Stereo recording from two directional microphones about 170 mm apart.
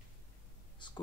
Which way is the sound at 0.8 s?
25° left (ahead or behind).